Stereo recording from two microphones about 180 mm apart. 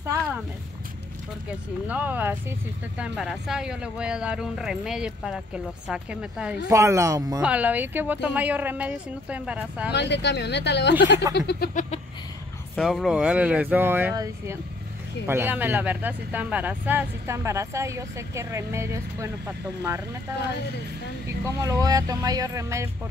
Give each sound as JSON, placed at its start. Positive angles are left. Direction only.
{"t": 1.9, "sound": "speech", "side_deg": -10}
{"t": 6.7, "sound": "speech", "side_deg": -15}
{"t": 7.4, "sound": "speech", "side_deg": -10}
{"t": 9.9, "sound": "speech", "side_deg": 70}
{"t": 11.3, "sound": "a sound", "side_deg": 65}
{"t": 12.7, "sound": "speech", "side_deg": 0}
{"t": 21.5, "sound": "speech", "side_deg": -15}